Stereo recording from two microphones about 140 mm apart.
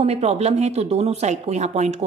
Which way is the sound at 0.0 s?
50° right (ahead or behind).